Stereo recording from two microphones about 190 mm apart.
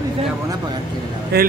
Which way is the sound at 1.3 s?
55° right (ahead or behind).